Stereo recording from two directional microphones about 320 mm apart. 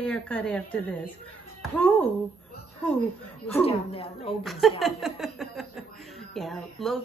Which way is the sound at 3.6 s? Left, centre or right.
Centre.